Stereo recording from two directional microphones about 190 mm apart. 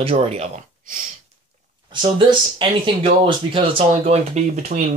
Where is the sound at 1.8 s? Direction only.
25° right (ahead or behind).